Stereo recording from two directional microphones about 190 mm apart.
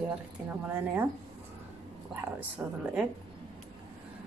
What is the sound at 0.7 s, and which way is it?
Speech, 10° right (ahead or behind).